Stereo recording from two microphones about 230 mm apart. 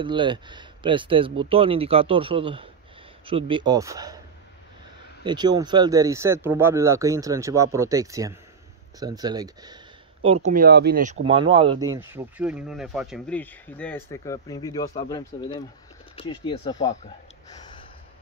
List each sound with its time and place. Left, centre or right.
0.0 s speech: right
5.2 s speech: centre
10.5 s speech: right
11.2 s speech: right
12.1 s speech: centre; by 16.7 s left
17.5 s a sound: centre